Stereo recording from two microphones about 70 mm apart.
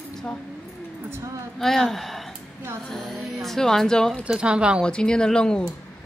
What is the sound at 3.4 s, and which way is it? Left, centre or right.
Speech, centre.